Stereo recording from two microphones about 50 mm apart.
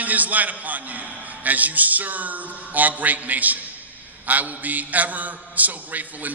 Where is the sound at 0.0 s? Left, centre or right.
Right.